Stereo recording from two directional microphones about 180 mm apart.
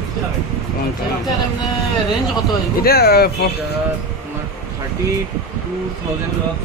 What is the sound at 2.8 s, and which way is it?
Speech, 60° left (ahead or behind).